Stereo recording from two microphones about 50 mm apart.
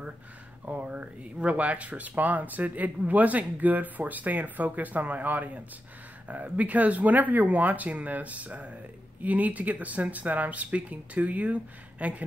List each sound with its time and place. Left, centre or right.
0.8 s speech: right